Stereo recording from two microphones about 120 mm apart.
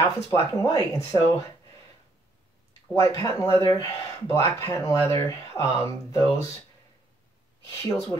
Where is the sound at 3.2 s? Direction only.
25° left (ahead or behind).